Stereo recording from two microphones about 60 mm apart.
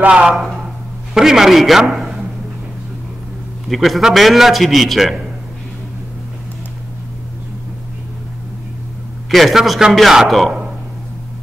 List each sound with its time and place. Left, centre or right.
0.1 s a man's voice: centre
3.6 s a man's voice: centre
9.3 s a man's voice: centre